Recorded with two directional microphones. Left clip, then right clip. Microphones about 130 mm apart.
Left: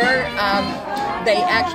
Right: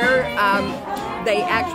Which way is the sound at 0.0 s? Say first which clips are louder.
Even; 20° right (ahead or behind).